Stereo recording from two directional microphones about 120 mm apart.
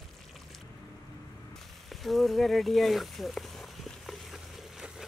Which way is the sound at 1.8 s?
Centre (ahead or behind).